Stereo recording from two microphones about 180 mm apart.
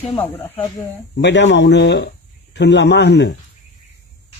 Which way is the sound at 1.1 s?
80° left.